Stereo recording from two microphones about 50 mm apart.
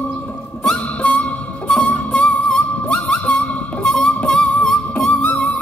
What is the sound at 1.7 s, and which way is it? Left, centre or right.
Music, left.